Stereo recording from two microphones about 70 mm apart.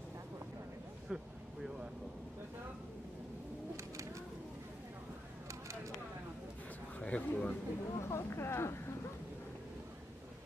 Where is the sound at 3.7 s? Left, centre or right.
Right.